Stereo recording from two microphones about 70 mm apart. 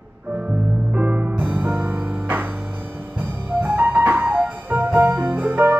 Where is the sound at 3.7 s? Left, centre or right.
Right.